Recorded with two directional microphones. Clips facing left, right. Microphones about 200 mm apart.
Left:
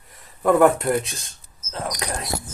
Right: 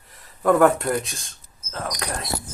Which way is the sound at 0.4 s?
5° left (ahead or behind).